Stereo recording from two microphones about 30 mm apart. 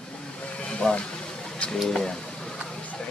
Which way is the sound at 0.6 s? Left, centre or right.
Left.